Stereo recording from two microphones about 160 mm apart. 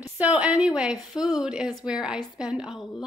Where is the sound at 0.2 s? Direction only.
5° right (ahead or behind).